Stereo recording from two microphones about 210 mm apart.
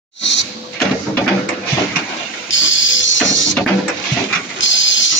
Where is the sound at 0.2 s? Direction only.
60° left (ahead or behind).